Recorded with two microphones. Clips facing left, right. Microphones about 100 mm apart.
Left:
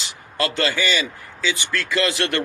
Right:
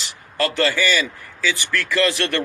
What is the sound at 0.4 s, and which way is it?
Speech, 20° left (ahead or behind).